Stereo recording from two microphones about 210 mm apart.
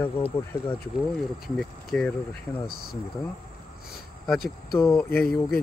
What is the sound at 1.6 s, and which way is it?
Speech, centre (ahead or behind).